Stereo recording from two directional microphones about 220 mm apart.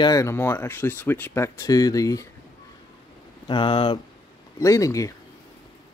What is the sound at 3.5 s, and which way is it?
Speech, 20° left (ahead or behind).